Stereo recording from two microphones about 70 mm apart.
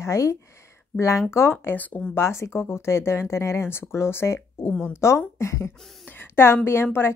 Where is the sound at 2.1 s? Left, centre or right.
Left.